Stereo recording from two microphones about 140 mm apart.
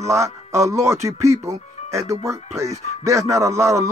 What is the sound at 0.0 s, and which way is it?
Speech, 20° right (ahead or behind).